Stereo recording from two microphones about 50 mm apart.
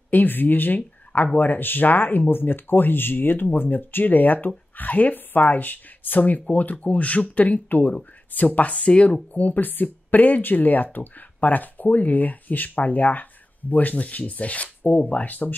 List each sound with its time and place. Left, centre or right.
0.1 s speech: left